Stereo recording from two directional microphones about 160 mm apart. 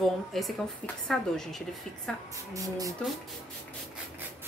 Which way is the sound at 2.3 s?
20° right (ahead or behind).